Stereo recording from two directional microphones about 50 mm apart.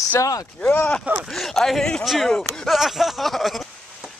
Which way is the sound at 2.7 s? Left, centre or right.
Centre.